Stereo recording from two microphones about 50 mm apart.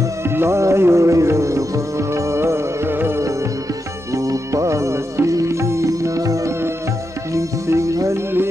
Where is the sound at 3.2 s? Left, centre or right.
Right.